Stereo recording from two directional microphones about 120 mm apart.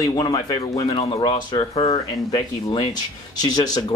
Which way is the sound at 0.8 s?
50° left (ahead or behind).